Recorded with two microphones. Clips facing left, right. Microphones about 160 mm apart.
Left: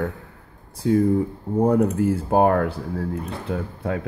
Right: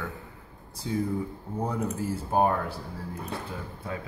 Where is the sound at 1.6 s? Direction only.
55° left (ahead or behind).